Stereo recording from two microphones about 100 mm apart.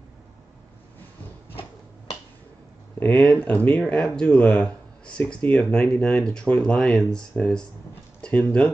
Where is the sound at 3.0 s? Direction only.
20° left (ahead or behind).